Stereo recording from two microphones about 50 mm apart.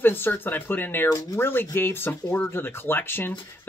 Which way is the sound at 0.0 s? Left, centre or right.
Left.